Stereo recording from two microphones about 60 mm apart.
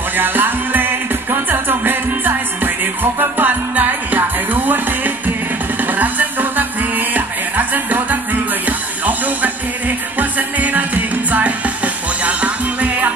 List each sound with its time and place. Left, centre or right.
0.1 s music: right